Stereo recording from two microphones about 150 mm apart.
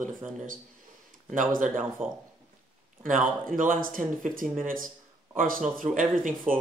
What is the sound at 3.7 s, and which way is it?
Speech, 65° right (ahead or behind).